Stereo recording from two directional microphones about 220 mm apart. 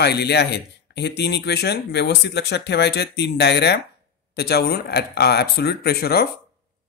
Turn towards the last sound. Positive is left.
turn(degrees=45)  # may be behind; listen again after turning